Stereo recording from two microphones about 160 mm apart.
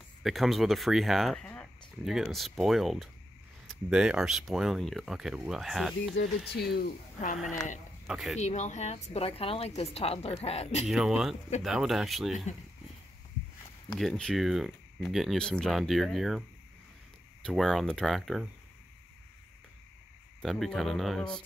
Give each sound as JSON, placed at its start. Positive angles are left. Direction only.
{"t": 0.2, "sound": "speech", "side_deg": 0}
{"t": 6.5, "sound": "speech", "side_deg": 80}
{"t": 8.1, "sound": "speech", "side_deg": 0}
{"t": 8.4, "sound": "a woman's voice", "side_deg": 45}
{"t": 10.9, "sound": "speech", "side_deg": -5}
{"t": 13.9, "sound": "speech", "side_deg": 0}
{"t": 20.4, "sound": "speech", "side_deg": 0}